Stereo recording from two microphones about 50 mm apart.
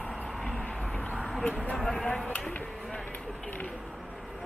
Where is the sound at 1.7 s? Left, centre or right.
Centre.